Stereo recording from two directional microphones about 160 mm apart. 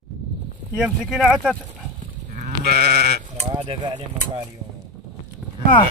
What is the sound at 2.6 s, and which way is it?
Goat, 75° right (ahead or behind).